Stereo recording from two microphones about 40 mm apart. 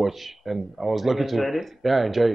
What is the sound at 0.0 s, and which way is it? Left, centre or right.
Speech, centre.